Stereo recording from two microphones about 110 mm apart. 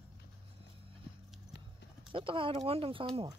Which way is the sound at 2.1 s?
55° right (ahead or behind).